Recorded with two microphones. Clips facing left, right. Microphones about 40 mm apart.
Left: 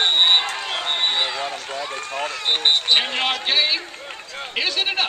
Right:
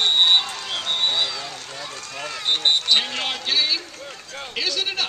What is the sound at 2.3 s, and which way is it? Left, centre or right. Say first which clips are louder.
Speech: even; left.